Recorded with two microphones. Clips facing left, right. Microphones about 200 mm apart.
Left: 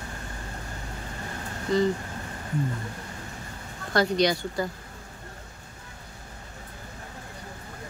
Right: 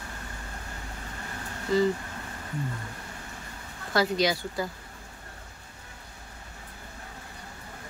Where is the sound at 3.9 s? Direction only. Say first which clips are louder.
Left 2 dB; 5° right (ahead or behind).